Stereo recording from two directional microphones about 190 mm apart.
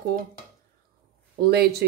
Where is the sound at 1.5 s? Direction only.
55° right (ahead or behind).